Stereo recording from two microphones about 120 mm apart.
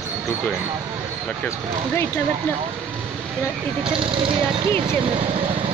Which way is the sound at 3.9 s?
45° right (ahead or behind).